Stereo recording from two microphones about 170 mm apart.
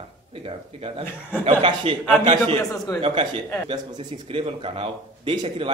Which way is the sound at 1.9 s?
30° right (ahead or behind).